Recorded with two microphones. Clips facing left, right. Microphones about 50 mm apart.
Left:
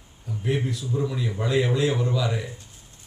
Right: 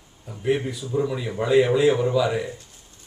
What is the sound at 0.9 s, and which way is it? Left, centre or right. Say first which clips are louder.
Speech: right 4 dB; centre.